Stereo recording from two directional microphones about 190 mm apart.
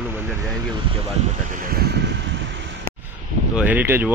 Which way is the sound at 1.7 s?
55° right (ahead or behind).